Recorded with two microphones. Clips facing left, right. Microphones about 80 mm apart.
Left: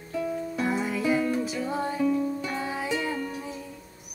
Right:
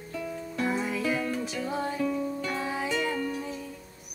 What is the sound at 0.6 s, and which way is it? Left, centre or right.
Music, centre.